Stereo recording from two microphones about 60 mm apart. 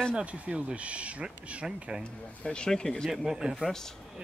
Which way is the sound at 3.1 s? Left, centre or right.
Centre.